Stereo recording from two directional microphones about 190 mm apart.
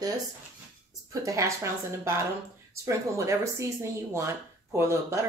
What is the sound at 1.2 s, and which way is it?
A woman's voice, 15° right (ahead or behind).